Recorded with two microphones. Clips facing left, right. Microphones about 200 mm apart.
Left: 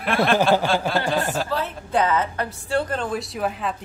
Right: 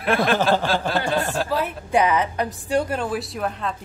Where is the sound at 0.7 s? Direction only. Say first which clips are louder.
Even; centre (ahead or behind).